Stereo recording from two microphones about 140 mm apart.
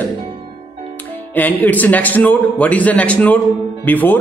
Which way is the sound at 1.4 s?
10° left (ahead or behind).